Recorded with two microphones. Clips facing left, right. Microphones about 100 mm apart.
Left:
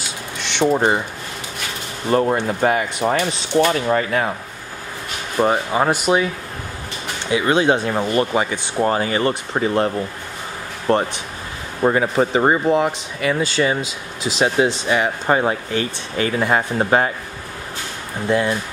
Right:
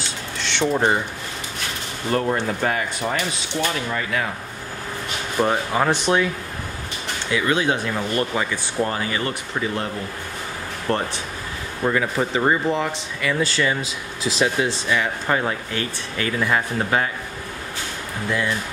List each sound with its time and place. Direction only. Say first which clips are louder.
0.0 s a sound: even; 15° left (ahead or behind)
0.7 s speech: left 2 dB; 10° left (ahead or behind)
2.0 s speech: left 4 dB; 20° left (ahead or behind)
3.1 s speech: left 6 dB; 35° left (ahead or behind)
5.4 s speech: left 3 dB; 15° left (ahead or behind)
7.2 s speech: left 5 dB; 25° left (ahead or behind)
10.9 s speech: left 6 dB; 15° left (ahead or behind)
11.8 s speech: left 5 dB; 30° left (ahead or behind)
12.6 s speech: left 5 dB; 15° left (ahead or behind)
14.9 s speech: left 4 dB; 30° left (ahead or behind)
18.3 s speech: left 6 dB; 35° left (ahead or behind)